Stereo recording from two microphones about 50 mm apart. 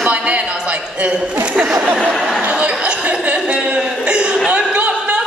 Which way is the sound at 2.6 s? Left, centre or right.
Right.